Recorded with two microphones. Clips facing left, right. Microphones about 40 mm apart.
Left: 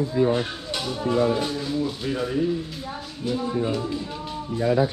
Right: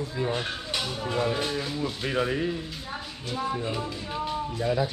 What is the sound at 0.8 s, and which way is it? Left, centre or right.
Speech, centre.